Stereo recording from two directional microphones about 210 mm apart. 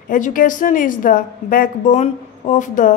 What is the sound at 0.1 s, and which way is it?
A woman's voice, 40° left (ahead or behind).